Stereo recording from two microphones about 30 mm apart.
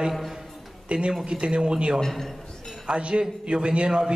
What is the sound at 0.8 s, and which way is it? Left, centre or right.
A man's voice, right.